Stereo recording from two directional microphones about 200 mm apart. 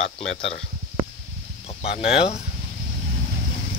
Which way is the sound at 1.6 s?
30° left (ahead or behind).